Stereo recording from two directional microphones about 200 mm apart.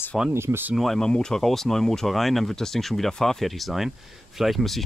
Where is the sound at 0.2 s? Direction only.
10° right (ahead or behind).